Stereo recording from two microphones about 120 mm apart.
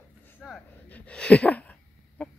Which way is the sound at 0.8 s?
10° left (ahead or behind).